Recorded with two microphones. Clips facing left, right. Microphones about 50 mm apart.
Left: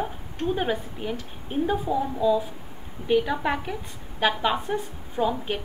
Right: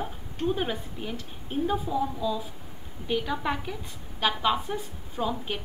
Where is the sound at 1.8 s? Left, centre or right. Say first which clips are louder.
Left 5 dB; centre.